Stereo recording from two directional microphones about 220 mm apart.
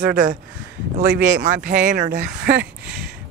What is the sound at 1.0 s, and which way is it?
Speech, 50° right (ahead or behind).